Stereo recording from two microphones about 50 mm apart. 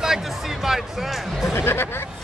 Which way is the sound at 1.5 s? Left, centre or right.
Left.